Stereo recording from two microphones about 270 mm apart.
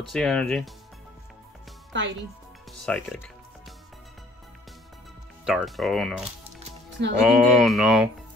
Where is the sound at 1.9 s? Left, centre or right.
Right.